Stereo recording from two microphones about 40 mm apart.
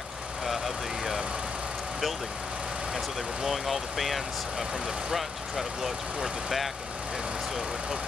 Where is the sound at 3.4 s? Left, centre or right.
Centre.